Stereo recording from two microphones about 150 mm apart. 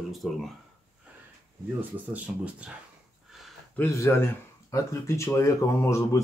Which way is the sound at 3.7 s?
15° left (ahead or behind).